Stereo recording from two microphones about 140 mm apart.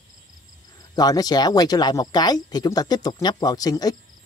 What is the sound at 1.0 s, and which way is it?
Speech, 25° left (ahead or behind).